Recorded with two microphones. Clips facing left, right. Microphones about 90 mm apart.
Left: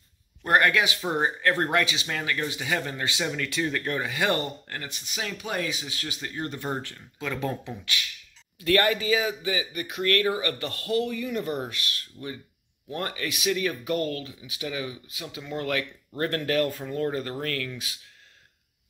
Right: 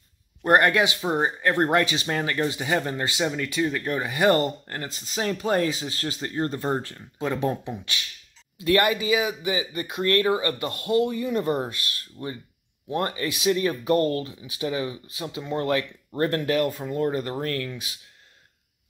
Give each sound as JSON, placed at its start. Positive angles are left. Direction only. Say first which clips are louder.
{"t": 0.4, "sound": "speech", "louder": "right 3 dB", "side_deg": -30}
{"t": 1.0, "sound": "speech", "louder": "right 2 dB", "side_deg": -15}
{"t": 1.7, "sound": "speech", "louder": "right 4 dB", "side_deg": -35}
{"t": 3.3, "sound": "speech", "louder": "right 3 dB", "side_deg": -10}
{"t": 4.0, "sound": "speech", "louder": "right 8 dB", "side_deg": -25}